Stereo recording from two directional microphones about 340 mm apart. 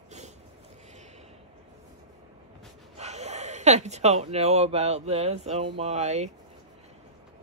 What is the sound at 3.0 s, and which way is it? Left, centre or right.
Speech, centre.